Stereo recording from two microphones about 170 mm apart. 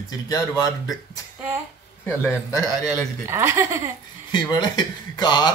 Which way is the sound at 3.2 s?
15° right (ahead or behind).